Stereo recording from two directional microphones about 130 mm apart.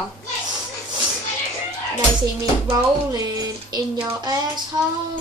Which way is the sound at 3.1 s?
30° right (ahead or behind).